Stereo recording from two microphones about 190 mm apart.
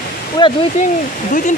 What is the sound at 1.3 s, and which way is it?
Speech, 45° left (ahead or behind).